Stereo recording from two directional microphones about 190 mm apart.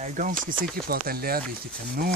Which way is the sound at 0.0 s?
45° right (ahead or behind).